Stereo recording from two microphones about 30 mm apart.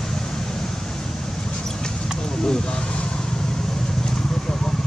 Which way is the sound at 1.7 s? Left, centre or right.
Left.